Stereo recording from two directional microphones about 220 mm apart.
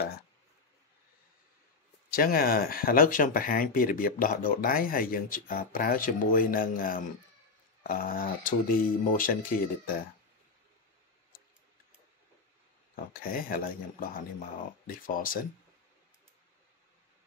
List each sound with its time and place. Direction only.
2.0 s speech: 40° left (ahead or behind)
12.9 s speech: 40° left (ahead or behind)